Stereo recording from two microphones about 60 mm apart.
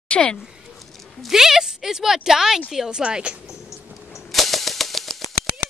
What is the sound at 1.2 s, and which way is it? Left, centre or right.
A woman's voice, centre.